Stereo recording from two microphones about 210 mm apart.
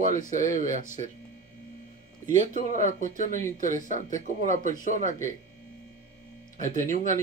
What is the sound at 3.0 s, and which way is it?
Speech, 35° right (ahead or behind).